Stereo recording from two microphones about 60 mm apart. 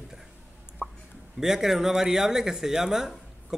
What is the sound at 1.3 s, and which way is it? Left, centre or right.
Speech, centre.